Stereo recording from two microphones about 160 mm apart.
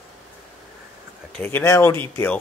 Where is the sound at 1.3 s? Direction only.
10° left (ahead or behind).